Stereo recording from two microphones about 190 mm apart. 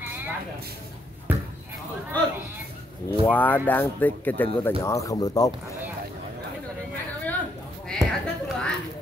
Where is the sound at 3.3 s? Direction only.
10° left (ahead or behind).